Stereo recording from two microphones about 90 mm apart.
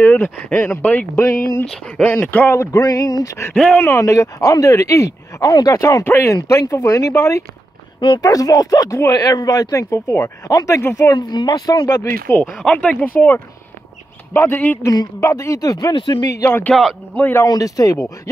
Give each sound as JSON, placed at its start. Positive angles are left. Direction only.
{"t": 0.0, "sound": "speech", "side_deg": 20}
{"t": 1.7, "sound": "speech", "side_deg": 10}
{"t": 2.8, "sound": "speech", "side_deg": 40}
{"t": 3.5, "sound": "speech", "side_deg": 10}
{"t": 3.8, "sound": "speech", "side_deg": 35}
{"t": 6.0, "sound": "speech", "side_deg": 30}
{"t": 6.3, "sound": "speech", "side_deg": 40}
{"t": 10.8, "sound": "speech", "side_deg": 25}
{"t": 11.1, "sound": "speech", "side_deg": 55}
{"t": 12.3, "sound": "speech", "side_deg": 30}
{"t": 14.9, "sound": "speech", "side_deg": 40}
{"t": 15.9, "sound": "speech", "side_deg": 65}
{"t": 16.4, "sound": "speech", "side_deg": 25}
{"t": 17.4, "sound": "speech", "side_deg": 40}